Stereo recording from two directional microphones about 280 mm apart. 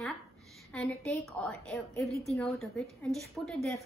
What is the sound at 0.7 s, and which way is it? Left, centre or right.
A woman's voice, centre.